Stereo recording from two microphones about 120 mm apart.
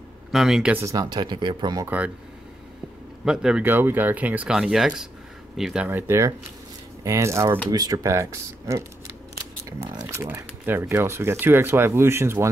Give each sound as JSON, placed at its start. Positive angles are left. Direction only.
{"t": 0.3, "sound": "speech", "side_deg": -5}
{"t": 0.7, "sound": "speech", "side_deg": -30}
{"t": 1.9, "sound": "speech", "side_deg": -10}
{"t": 3.3, "sound": "speech", "side_deg": -5}
{"t": 5.9, "sound": "speech", "side_deg": -20}
{"t": 10.1, "sound": "speech", "side_deg": -20}